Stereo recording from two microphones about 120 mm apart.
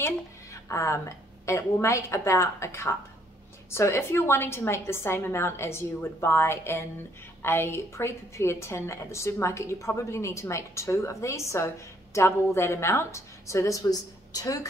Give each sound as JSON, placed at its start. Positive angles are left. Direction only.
{"t": 0.0, "sound": "a woman's voice", "side_deg": 25}